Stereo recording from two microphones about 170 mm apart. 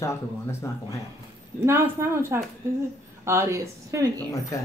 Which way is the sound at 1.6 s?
15° right (ahead or behind).